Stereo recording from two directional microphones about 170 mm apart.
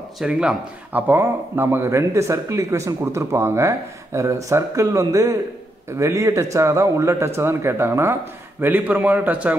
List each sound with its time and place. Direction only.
0.2 s speech: 5° right (ahead or behind)